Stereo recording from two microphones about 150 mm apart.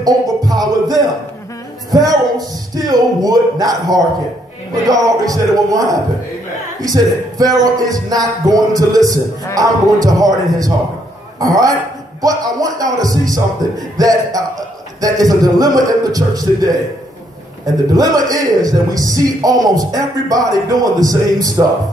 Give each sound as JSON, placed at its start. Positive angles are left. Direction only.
{"t": 0.0, "sound": "music", "side_deg": -25}
{"t": 2.0, "sound": "a man's voice", "side_deg": -25}
{"t": 17.9, "sound": "speech", "side_deg": -25}